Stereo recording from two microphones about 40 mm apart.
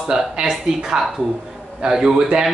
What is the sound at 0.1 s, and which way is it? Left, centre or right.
Speech, centre.